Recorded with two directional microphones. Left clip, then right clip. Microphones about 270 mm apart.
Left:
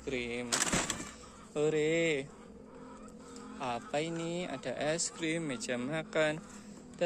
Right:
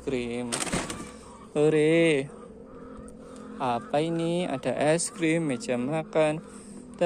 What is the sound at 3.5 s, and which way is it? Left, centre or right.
Speech, right.